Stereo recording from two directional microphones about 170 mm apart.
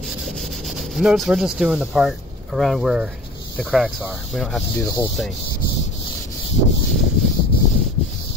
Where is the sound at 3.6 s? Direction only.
Centre (ahead or behind).